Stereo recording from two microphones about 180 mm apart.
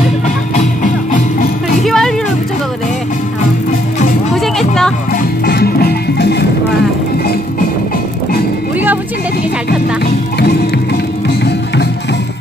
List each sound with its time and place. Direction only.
0.6 s music: 45° left (ahead or behind)
1.9 s music: centre (ahead or behind)
4.3 s music: centre (ahead or behind)
5.4 s music: 60° left (ahead or behind)